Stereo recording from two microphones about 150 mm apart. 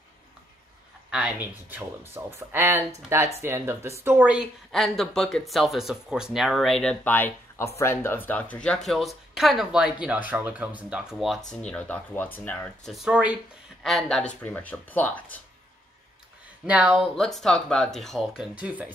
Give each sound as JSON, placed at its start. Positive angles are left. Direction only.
{"t": 1.1, "sound": "speech", "side_deg": -10}
{"t": 11.6, "sound": "speech", "side_deg": 10}
{"t": 16.6, "sound": "speech", "side_deg": -10}